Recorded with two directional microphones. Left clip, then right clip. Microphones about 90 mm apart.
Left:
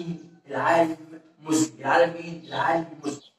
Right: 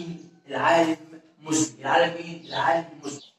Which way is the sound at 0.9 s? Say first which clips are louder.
Right 5 dB; 15° right (ahead or behind).